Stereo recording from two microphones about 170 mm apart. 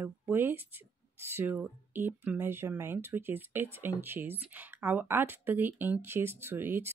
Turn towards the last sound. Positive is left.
turn(degrees=-10)  # may be behind; listen again after turning